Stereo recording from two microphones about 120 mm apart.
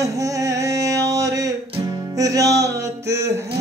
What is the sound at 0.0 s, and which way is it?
Music, 25° right (ahead or behind).